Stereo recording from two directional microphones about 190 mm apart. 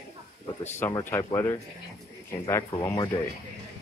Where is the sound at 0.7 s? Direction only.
10° left (ahead or behind).